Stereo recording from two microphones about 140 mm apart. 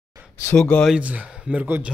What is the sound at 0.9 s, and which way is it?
Speech, 10° right (ahead or behind).